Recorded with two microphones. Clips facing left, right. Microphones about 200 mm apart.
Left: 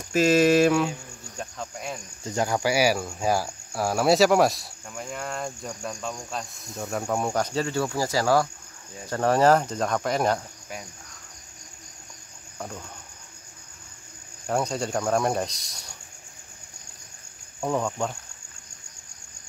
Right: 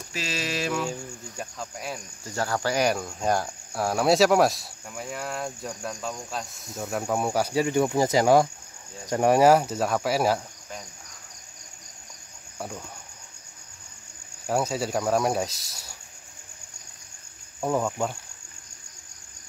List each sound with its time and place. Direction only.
0.1 s mantra: 50° left (ahead or behind)
1.4 s cricket: 5° right (ahead or behind)
2.2 s cricket: 15° left (ahead or behind); by 10.4 s 5° right (ahead or behind)
12.5 s cricket: 5° right (ahead or behind)
14.4 s cricket: 5° right (ahead or behind)
17.6 s cricket: 5° right (ahead or behind)